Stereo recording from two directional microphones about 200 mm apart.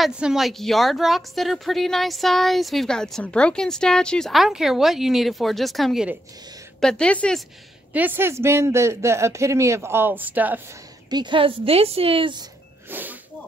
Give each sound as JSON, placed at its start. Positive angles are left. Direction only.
{"t": 0.0, "sound": "speech", "side_deg": 0}
{"t": 7.9, "sound": "speech", "side_deg": -10}
{"t": 11.1, "sound": "a woman's voice", "side_deg": -20}
{"t": 12.9, "sound": "snake", "side_deg": -10}